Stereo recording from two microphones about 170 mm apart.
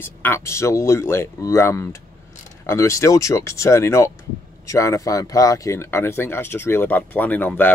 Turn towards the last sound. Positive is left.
turn(degrees=10)  # may be behind; listen again after turning